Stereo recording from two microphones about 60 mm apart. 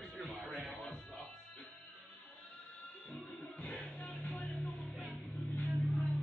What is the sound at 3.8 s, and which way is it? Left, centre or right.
Music, centre.